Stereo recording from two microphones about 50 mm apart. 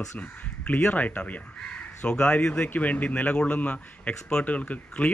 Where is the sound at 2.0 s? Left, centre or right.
Centre.